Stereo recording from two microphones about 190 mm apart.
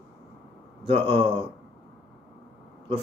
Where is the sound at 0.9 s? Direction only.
30° right (ahead or behind).